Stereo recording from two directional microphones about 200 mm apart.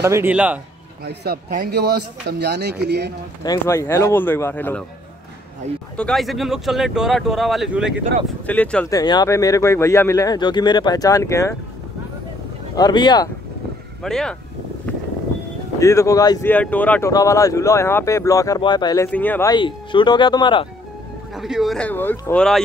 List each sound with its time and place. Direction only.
0.0 s speech: 10° right (ahead or behind)
1.0 s speech: 55° right (ahead or behind)
3.4 s speech: 15° left (ahead or behind)
5.9 s speech: centre (ahead or behind)
8.5 s speech: 10° left (ahead or behind)
12.7 s speech: 20° left (ahead or behind)
14.0 s speech: 5° left (ahead or behind)
14.9 s vehicle: 10° left (ahead or behind)
15.8 s speech: 15° left (ahead or behind)
19.0 s speech: 10° left (ahead or behind)
19.5 s speech: 25° left (ahead or behind)
21.4 s speech: centre (ahead or behind)